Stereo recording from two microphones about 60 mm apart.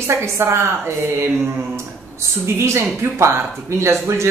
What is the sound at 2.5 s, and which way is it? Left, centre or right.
Speech, right.